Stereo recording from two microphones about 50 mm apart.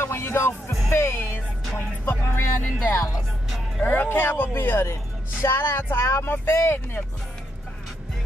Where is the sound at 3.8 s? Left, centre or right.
Left.